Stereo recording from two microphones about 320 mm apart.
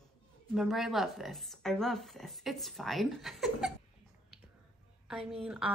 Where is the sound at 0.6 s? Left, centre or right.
Centre.